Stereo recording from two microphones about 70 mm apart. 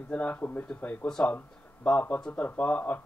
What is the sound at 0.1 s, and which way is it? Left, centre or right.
Speech, left.